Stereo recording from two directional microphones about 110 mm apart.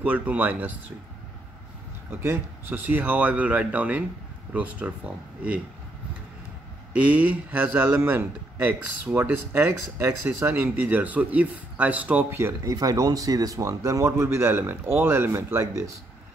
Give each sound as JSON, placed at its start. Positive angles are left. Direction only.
{"t": 0.0, "sound": "speech", "side_deg": -15}
{"t": 2.0, "sound": "speech", "side_deg": -20}
{"t": 6.9, "sound": "a man's voice", "side_deg": -10}